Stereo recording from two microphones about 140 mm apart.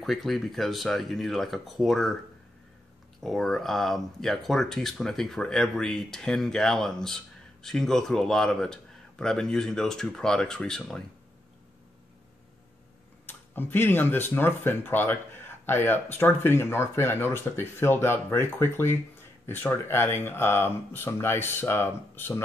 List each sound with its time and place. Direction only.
0.0 s speech: centre (ahead or behind)
3.2 s speech: centre (ahead or behind)
13.3 s speech: 15° left (ahead or behind)